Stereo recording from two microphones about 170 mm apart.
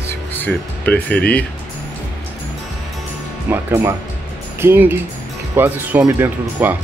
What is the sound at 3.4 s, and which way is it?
Speech, 15° right (ahead or behind).